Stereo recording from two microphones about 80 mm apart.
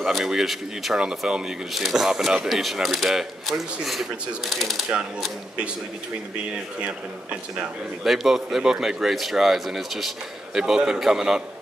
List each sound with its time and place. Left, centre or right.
0.0 s speech: centre
8.0 s speech: centre